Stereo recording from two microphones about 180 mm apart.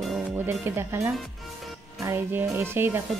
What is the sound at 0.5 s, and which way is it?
Speech, 15° right (ahead or behind).